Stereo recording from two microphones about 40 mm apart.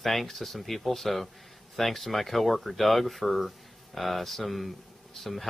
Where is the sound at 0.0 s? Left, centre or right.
Centre.